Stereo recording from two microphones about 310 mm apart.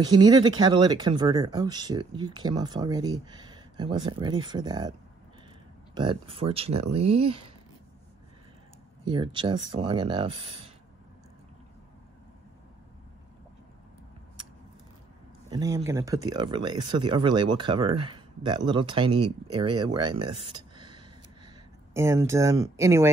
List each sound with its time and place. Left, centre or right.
0.0 s speech: centre
5.9 s speech: centre
9.0 s speech: centre
15.5 s speech: centre
20.5 s a sound: centre
21.9 s speech: centre